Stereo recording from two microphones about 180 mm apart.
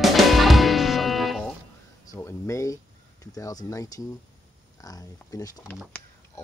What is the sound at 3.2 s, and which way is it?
Speech, 20° left (ahead or behind).